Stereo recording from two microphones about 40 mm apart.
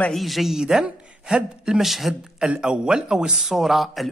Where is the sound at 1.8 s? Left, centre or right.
Centre.